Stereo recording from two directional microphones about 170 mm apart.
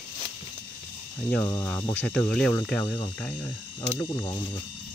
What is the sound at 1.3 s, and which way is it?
Speech, 15° left (ahead or behind).